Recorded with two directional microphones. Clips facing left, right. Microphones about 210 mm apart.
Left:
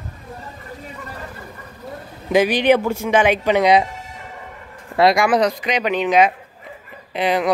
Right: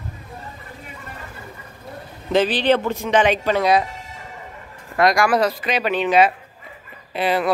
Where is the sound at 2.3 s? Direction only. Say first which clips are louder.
Left 2 dB; 10° left (ahead or behind).